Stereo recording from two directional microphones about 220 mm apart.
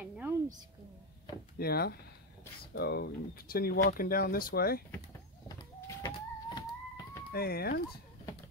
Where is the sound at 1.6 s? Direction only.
45° left (ahead or behind).